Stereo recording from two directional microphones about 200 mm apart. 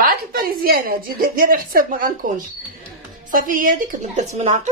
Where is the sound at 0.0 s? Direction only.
50° right (ahead or behind).